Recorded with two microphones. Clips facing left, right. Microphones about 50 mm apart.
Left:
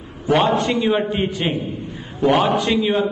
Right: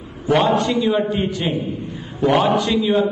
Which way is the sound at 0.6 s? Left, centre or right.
Left.